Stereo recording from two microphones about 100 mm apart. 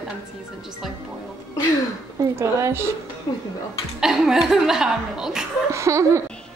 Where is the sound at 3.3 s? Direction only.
50° left (ahead or behind).